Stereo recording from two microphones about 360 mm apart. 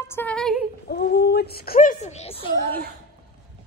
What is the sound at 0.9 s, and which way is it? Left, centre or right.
Speech, left.